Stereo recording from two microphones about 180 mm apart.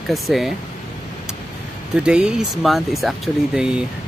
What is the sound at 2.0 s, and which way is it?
Speech, 5° right (ahead or behind).